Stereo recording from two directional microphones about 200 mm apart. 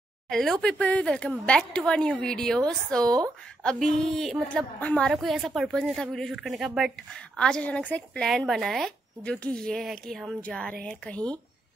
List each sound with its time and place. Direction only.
0.3 s speech: centre (ahead or behind)